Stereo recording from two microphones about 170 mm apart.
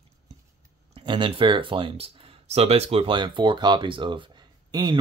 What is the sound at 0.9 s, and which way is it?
Speech, 30° right (ahead or behind).